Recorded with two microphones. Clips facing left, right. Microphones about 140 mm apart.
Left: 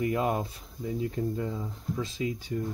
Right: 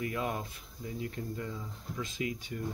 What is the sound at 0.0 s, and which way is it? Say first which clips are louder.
Speech: left 7 dB; 30° left (ahead or behind).